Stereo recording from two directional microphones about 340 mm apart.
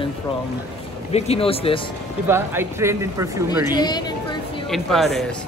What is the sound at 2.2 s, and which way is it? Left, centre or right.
Speech, centre.